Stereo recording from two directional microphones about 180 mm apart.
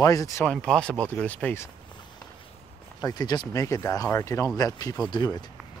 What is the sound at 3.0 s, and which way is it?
Speech, 20° left (ahead or behind).